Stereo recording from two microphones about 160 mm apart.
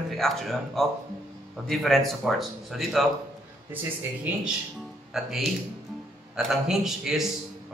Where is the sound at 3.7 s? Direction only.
10° right (ahead or behind).